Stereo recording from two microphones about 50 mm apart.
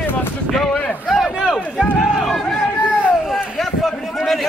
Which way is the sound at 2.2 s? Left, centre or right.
Centre.